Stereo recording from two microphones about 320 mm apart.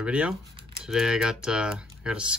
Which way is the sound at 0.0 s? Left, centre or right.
Centre.